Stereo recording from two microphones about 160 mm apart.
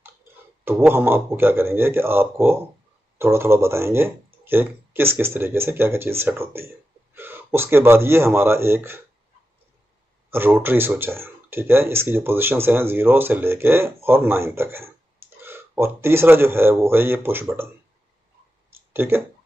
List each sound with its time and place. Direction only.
0.7 s speech: 15° right (ahead or behind)
10.3 s speech: 15° right (ahead or behind)
18.9 s speech: 15° right (ahead or behind)